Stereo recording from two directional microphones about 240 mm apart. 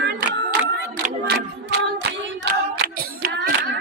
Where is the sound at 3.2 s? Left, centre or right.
Right.